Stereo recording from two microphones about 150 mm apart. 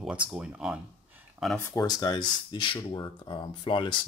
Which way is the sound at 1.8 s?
25° left (ahead or behind).